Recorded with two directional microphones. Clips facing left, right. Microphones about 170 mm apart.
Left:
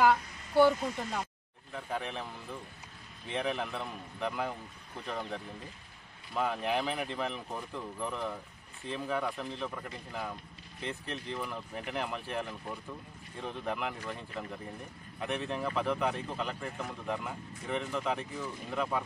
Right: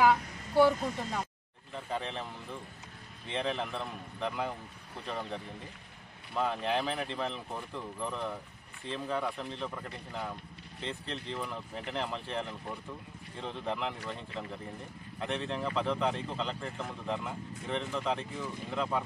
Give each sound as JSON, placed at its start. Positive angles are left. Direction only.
{"t": 0.0, "sound": "a sound", "side_deg": -5}
{"t": 1.9, "sound": "speech", "side_deg": 10}
{"t": 6.3, "sound": "speech", "side_deg": 10}
{"t": 7.5, "sound": "speech", "side_deg": 0}
{"t": 8.0, "sound": "speech", "side_deg": 10}